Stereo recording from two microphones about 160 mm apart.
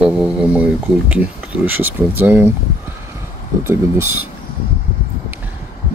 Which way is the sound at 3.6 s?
15° right (ahead or behind).